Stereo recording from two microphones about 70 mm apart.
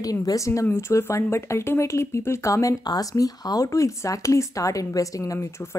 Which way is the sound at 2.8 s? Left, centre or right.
Left.